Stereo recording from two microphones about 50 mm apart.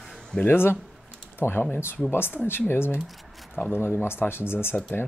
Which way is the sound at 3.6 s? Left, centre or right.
Left.